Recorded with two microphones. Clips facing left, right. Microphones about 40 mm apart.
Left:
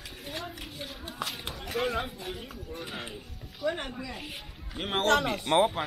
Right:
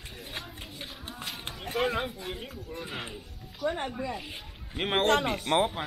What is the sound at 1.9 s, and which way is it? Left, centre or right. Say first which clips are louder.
Speech: right 1 dB; centre.